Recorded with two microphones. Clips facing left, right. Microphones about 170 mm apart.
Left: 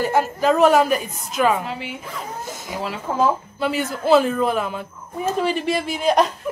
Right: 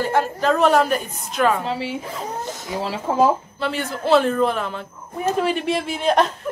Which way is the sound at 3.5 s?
10° left (ahead or behind).